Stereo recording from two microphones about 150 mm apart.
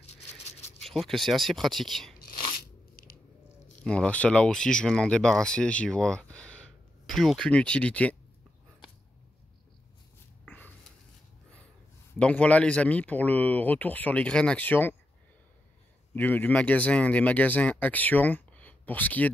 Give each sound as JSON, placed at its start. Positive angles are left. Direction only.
{"t": 0.5, "sound": "a sound", "side_deg": 50}
{"t": 0.7, "sound": "speech", "side_deg": 0}
{"t": 3.8, "sound": "speech", "side_deg": 5}
{"t": 10.4, "sound": "a sound", "side_deg": 10}
{"t": 12.2, "sound": "speech", "side_deg": 10}
{"t": 16.2, "sound": "speech", "side_deg": 10}